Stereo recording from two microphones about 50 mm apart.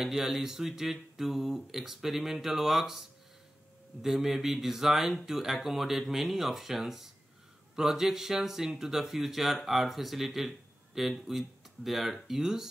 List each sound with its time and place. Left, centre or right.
0.0 s speech: centre